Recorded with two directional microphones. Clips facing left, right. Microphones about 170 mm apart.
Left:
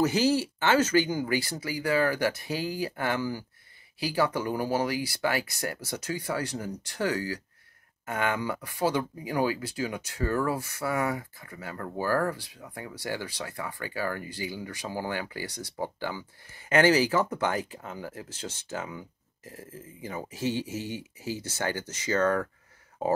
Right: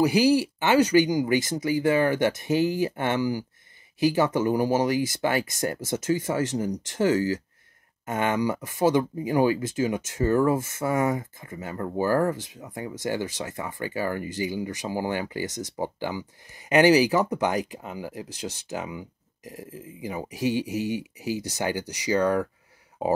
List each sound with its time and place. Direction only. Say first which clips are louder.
0.0 s speech: right 4 dB; 10° right (ahead or behind)